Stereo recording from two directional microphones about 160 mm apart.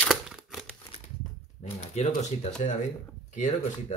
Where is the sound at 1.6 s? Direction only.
45° left (ahead or behind).